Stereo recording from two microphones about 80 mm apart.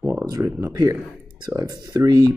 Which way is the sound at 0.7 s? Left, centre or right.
Right.